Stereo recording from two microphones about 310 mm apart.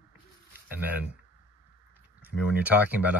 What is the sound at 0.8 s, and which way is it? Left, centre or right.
Speech, centre.